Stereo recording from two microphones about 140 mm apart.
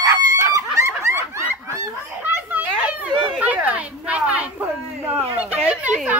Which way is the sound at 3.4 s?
10° right (ahead or behind).